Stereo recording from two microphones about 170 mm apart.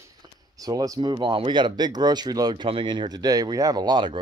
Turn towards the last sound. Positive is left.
turn(degrees=-25)  # may be behind; listen again after turning